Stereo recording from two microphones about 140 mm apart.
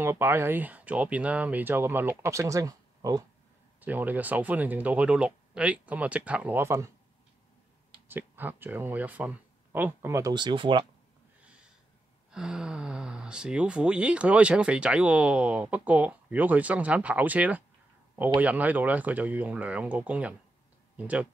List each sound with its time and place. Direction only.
0.0 s speech: 15° right (ahead or behind)
3.8 s speech: 10° right (ahead or behind)
8.1 s speech: 15° right (ahead or behind)
10.3 s speech: 35° right (ahead or behind)
12.3 s speech: 5° right (ahead or behind)